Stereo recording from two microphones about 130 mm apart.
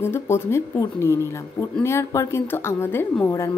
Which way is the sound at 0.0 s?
20° left (ahead or behind).